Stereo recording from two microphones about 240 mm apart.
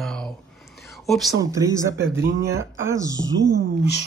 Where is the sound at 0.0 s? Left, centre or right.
Centre.